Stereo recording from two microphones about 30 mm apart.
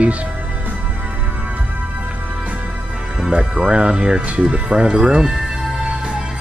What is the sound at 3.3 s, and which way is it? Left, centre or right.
Speech, right.